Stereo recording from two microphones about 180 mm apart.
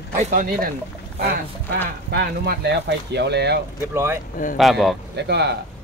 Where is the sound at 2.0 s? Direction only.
65° right (ahead or behind).